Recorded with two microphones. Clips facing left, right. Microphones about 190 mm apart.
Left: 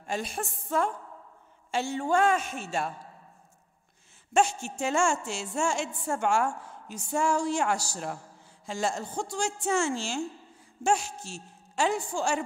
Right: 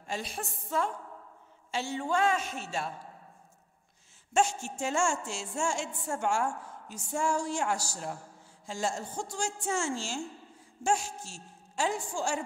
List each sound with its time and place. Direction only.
0.0 s a woman's voice: 50° left (ahead or behind)
4.3 s a woman's voice: 65° left (ahead or behind)